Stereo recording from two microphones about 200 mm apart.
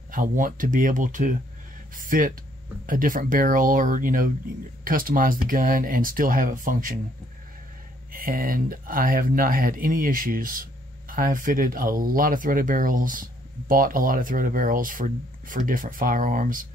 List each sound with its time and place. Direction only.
0.1 s speech: 40° right (ahead or behind)
8.1 s speech: 45° right (ahead or behind)